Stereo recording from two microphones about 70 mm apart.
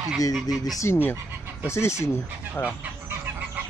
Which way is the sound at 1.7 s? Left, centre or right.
Left.